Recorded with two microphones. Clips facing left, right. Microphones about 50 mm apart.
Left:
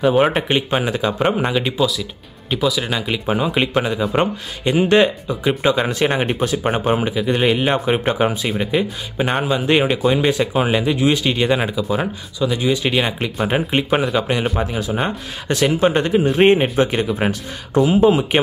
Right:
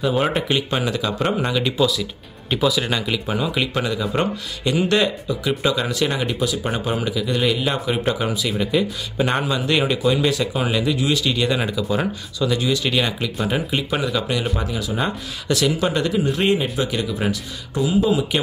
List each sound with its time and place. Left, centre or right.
0.0 s speech: centre
1.8 s speech: centre
3.1 s speech: left
9.2 s speech: centre
11.7 s speech: centre
13.5 s a man's voice: left